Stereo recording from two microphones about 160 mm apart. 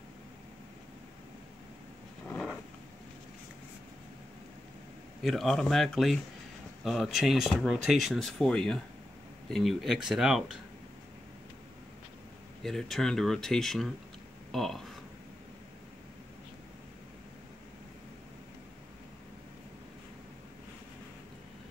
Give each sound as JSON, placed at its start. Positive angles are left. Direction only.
{"t": 2.2, "sound": "vehicle", "side_deg": 10}
{"t": 5.2, "sound": "speech", "side_deg": 0}
{"t": 12.6, "sound": "speech", "side_deg": 0}